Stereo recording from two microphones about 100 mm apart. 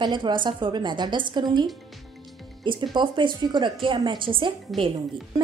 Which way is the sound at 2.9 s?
55° right (ahead or behind).